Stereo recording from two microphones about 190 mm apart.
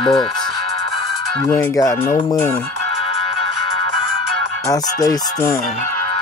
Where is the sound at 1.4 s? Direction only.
5° left (ahead or behind).